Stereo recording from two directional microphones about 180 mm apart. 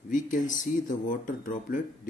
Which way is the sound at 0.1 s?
45° left (ahead or behind).